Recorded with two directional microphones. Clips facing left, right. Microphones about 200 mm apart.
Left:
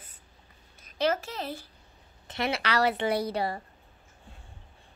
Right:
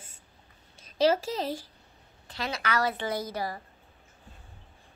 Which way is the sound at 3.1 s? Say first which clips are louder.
Left 4 dB; 65° left (ahead or behind).